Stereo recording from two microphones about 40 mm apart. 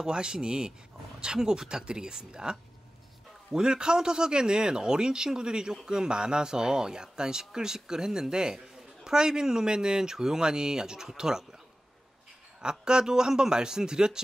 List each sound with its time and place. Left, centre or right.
0.0 s a man's voice: right
12.5 s speech: centre